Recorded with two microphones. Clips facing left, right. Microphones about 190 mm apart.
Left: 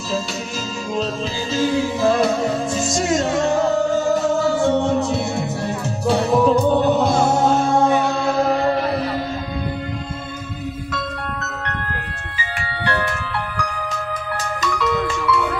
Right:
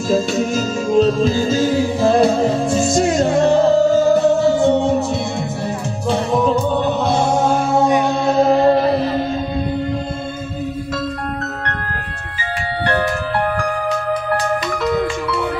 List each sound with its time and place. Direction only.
0.9 s music: 45° right (ahead or behind); by 5.0 s 15° right (ahead or behind)
6.0 s music: 5° left (ahead or behind)
7.7 s mantra: 10° right (ahead or behind)
8.3 s music: 25° right (ahead or behind)
12.8 s music: 40° right (ahead or behind)